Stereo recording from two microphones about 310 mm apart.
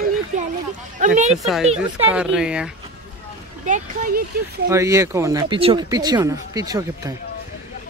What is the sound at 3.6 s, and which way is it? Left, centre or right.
Speech, right.